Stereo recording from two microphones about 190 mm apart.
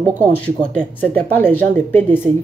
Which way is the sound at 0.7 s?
5° left (ahead or behind).